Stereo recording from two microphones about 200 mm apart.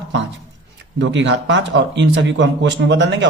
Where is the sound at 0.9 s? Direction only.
65° right (ahead or behind).